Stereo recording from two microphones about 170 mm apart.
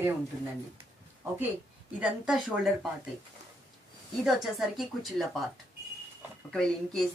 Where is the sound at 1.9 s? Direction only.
5° right (ahead or behind).